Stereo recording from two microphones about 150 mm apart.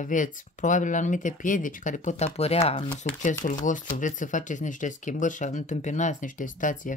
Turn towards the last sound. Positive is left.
turn(degrees=60)  # may be behind; listen again after turning